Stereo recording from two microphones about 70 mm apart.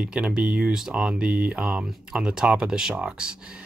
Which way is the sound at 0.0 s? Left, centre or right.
Centre.